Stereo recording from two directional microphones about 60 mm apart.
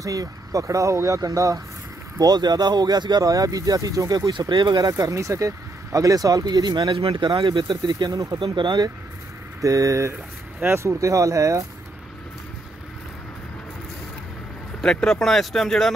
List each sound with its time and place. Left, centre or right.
0.0 s speech: right
2.2 s speech: right
8.1 s speech: right
10.6 s speech: right
11.0 s speech: right
14.8 s speech: centre